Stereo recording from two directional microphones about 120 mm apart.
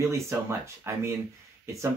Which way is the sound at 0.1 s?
20° right (ahead or behind).